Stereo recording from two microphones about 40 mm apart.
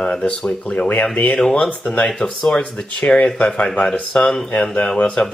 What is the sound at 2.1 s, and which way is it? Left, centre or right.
Speech, centre.